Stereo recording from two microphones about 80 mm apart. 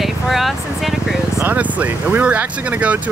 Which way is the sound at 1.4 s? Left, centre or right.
Centre.